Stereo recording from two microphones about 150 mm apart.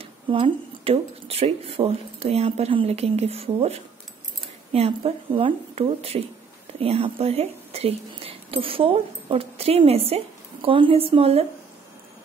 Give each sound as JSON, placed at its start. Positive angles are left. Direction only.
{"t": 0.0, "sound": "speech", "side_deg": -40}